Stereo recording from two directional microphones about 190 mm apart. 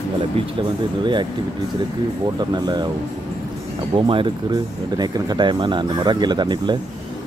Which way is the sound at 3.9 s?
25° right (ahead or behind).